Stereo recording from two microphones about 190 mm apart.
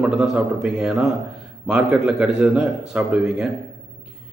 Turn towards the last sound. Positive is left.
turn(degrees=-5)  # may be behind; listen again after turning